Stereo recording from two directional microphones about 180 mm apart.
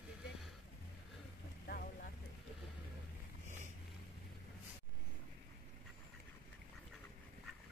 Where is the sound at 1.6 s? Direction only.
60° left (ahead or behind).